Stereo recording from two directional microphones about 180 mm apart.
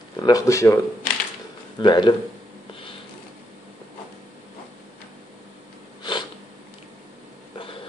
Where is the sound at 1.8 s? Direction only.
25° left (ahead or behind).